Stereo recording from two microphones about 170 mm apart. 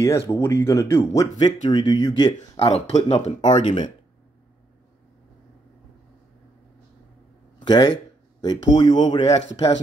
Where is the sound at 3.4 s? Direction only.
25° left (ahead or behind).